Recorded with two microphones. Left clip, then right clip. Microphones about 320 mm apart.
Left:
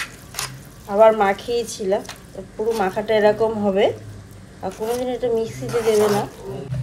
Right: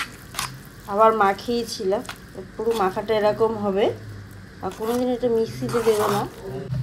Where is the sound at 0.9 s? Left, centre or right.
Centre.